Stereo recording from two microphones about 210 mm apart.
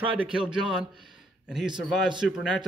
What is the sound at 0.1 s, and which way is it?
A man's voice, 5° right (ahead or behind).